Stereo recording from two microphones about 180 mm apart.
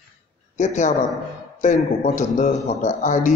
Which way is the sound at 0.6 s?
45° left (ahead or behind).